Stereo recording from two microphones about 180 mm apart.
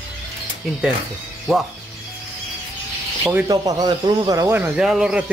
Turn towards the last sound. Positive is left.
turn(degrees=-5)  # may be behind; listen again after turning